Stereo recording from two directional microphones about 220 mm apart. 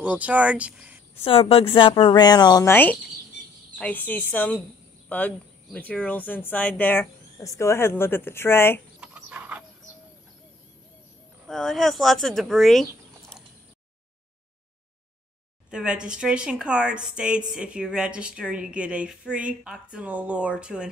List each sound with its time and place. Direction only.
0.0 s a woman's voice: 5° right (ahead or behind)
1.2 s speech: 25° left (ahead or behind)
9.0 s a sound: 5° right (ahead or behind)
11.4 s a woman's voice: centre (ahead or behind)
15.7 s a woman's voice: 5° right (ahead or behind)